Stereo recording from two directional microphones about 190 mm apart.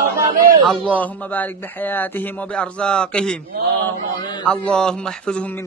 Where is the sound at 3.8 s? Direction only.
20° left (ahead or behind).